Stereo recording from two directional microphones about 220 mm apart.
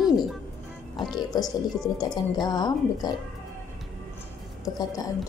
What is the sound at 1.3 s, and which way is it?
A woman's voice, 15° left (ahead or behind).